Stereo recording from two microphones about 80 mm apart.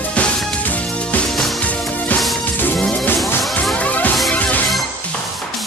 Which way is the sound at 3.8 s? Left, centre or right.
Centre.